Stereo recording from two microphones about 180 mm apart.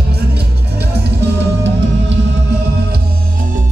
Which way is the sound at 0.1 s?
65° right (ahead or behind).